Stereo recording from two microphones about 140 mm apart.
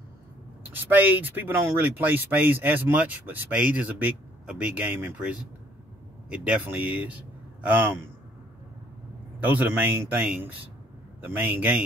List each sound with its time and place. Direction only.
0.7 s speech: 15° right (ahead or behind)
9.4 s speech: 10° right (ahead or behind)